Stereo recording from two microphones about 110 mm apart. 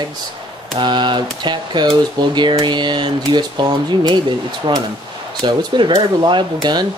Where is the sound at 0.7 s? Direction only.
45° right (ahead or behind).